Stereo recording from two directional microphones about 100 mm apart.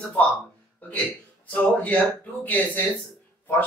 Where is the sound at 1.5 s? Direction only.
15° left (ahead or behind).